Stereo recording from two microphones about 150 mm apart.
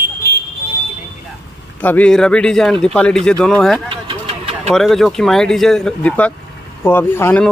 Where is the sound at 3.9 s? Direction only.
35° right (ahead or behind).